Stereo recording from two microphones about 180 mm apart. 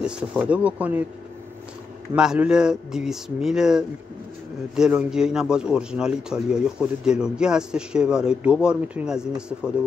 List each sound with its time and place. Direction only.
0.0 s speech: 5° right (ahead or behind)
2.1 s a man's voice: 5° right (ahead or behind)